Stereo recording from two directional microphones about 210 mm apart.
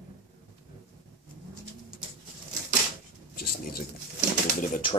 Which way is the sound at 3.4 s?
45° left (ahead or behind).